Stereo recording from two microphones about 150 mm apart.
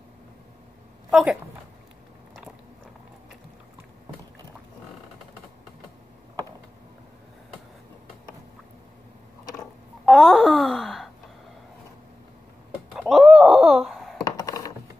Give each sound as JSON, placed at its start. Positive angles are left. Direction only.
{"t": 1.1, "sound": "speech", "side_deg": -5}
{"t": 10.0, "sound": "wail", "side_deg": 5}
{"t": 13.0, "sound": "wail", "side_deg": 0}
{"t": 14.2, "sound": "coin", "side_deg": 25}